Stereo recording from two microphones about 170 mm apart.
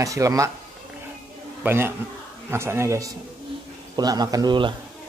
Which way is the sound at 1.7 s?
15° right (ahead or behind).